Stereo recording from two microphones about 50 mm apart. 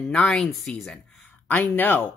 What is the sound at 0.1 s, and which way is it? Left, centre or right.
Speech, centre.